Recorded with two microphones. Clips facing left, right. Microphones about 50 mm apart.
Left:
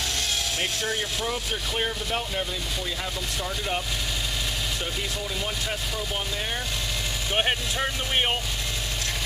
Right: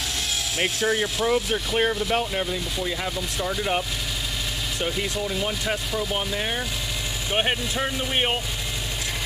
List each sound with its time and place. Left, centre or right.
0.6 s speech: centre
4.8 s speech: centre
5.7 s speech: centre
7.3 s speech: centre